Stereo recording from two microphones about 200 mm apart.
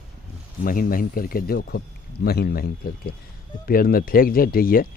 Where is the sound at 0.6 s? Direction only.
45° left (ahead or behind).